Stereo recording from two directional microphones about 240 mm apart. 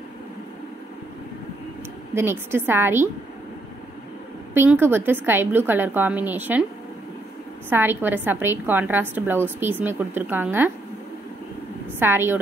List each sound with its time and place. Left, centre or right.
2.1 s a woman's voice: centre
4.6 s a woman's voice: centre
7.7 s a woman's voice: centre
12.0 s a woman's voice: centre